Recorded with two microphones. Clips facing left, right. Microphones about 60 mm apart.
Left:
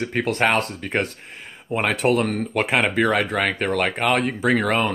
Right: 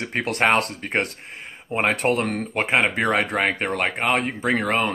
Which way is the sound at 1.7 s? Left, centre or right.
Right.